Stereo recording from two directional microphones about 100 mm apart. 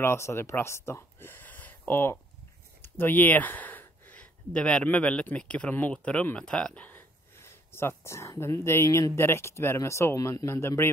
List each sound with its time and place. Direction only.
0.0 s speech: 25° left (ahead or behind)
2.8 s a sound: 20° left (ahead or behind)
4.8 s speech: 10° left (ahead or behind)